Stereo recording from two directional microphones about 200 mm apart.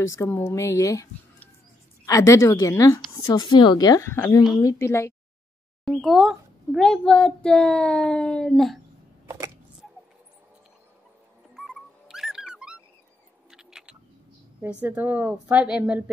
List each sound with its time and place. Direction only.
0.0 s a woman's voice: 15° left (ahead or behind)
5.9 s a child's voice: centre (ahead or behind)
9.2 s a sound: 15° right (ahead or behind)
11.5 s music: centre (ahead or behind)
13.5 s vehicle: 5° right (ahead or behind)
14.6 s a woman's voice: 10° right (ahead or behind)